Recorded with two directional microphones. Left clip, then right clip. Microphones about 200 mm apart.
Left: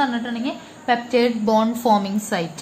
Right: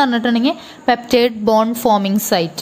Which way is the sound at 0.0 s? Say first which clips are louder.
Right 7 dB; 60° right (ahead or behind).